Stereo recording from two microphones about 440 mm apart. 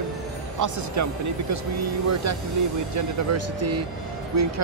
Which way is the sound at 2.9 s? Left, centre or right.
Right.